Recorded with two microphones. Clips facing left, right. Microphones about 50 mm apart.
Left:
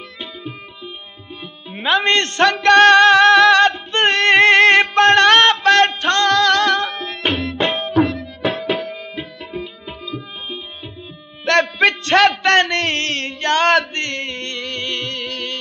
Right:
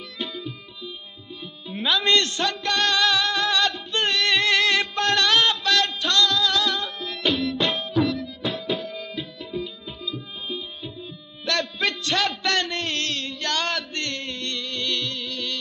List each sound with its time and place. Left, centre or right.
0.4 s music: left
1.7 s speech: left
2.4 s music: left
3.6 s music: left
6.3 s music: left
7.1 s music: left
8.4 s tabla: left
8.9 s tabla: left
9.6 s tabla: left
11.4 s a sound: left
12.2 s music: left
13.7 s a sound: left
14.9 s music: left